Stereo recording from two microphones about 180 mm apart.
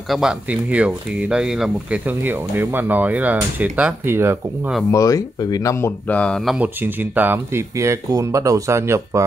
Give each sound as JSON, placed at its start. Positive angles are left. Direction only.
{"t": 0.1, "sound": "speech", "side_deg": -5}
{"t": 4.9, "sound": "speech", "side_deg": 20}